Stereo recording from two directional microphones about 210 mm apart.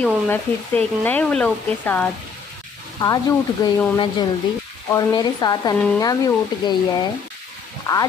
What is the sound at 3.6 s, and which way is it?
Speech, 20° left (ahead or behind).